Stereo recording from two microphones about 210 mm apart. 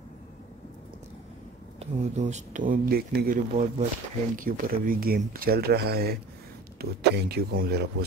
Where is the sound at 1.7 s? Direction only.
35° right (ahead or behind).